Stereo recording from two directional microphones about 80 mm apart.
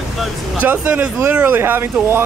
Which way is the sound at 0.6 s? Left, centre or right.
Right.